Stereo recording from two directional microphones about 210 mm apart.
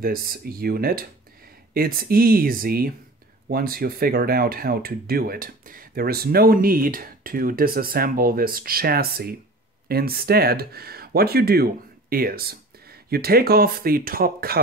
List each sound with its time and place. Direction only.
0.0 s speech: 45° right (ahead or behind)